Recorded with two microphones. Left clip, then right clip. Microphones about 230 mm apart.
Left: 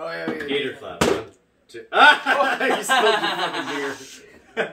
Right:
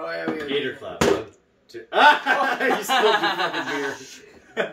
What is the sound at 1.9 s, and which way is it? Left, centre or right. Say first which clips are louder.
Speech: left 2 dB; centre.